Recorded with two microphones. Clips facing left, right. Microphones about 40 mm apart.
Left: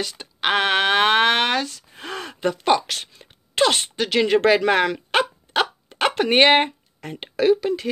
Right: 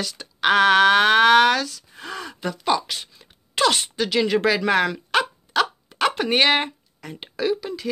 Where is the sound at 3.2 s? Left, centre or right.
Left.